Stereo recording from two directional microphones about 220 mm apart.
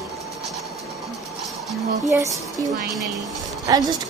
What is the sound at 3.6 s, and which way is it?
Speech, 15° right (ahead or behind).